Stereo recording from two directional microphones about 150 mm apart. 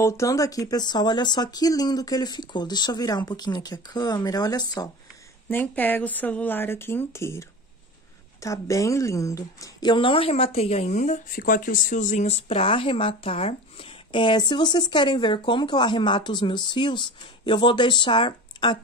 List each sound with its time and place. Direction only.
0.0 s speech: 20° left (ahead or behind)
5.5 s speech: 10° left (ahead or behind); by 18.8 s 35° left (ahead or behind)